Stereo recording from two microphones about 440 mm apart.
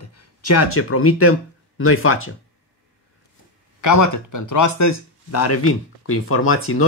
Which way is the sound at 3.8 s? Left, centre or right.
Left.